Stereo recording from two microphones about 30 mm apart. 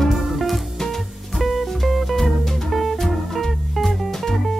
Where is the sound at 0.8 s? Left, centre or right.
Centre.